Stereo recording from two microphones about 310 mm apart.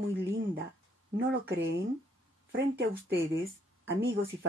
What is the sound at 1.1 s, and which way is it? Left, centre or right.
Speech, right.